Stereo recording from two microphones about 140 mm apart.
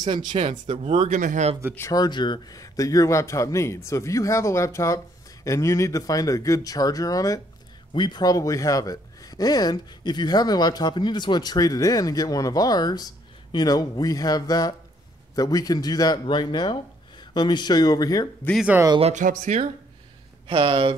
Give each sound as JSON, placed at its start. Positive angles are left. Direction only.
{"t": 0.3, "sound": "speech", "side_deg": -50}
{"t": 1.8, "sound": "a man's voice", "side_deg": 25}
{"t": 18.9, "sound": "speech", "side_deg": -50}
{"t": 19.2, "sound": "speech", "side_deg": -60}
{"t": 20.4, "sound": "speech", "side_deg": -40}